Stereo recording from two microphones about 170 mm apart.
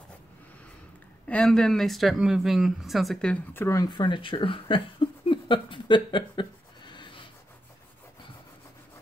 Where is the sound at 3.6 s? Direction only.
20° left (ahead or behind).